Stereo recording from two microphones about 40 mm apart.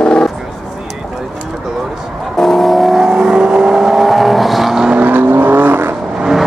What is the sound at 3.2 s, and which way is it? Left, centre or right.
Vehicle, right.